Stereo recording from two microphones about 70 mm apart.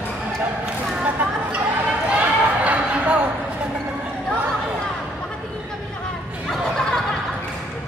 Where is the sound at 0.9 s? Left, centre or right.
Centre.